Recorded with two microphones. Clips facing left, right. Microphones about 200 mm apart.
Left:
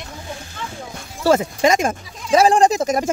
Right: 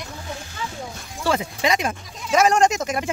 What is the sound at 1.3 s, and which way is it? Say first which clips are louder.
Speech: left 6 dB; 45° left (ahead or behind).